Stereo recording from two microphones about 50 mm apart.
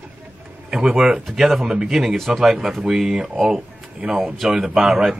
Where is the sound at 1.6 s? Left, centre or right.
Centre.